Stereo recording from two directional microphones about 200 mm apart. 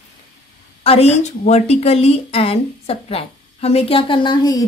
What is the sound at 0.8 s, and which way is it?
A woman's voice, 30° left (ahead or behind).